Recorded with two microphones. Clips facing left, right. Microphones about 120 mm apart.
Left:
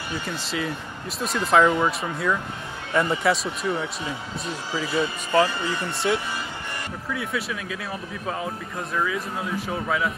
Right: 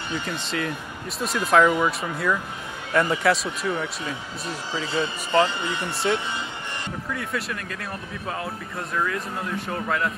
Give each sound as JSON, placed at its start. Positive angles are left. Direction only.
{"t": 0.4, "sound": "speech", "side_deg": 5}
{"t": 4.7, "sound": "speech", "side_deg": -20}
{"t": 7.1, "sound": "speech", "side_deg": 0}